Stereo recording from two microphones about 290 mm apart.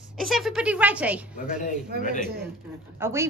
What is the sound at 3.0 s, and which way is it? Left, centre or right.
Speech, centre.